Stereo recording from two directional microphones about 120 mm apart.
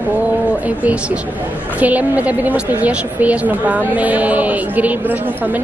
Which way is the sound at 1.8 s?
15° right (ahead or behind).